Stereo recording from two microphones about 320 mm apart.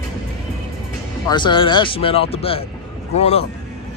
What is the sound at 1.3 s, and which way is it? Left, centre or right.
Speech, centre.